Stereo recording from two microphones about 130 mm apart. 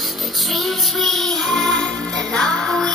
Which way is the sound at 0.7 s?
Centre (ahead or behind).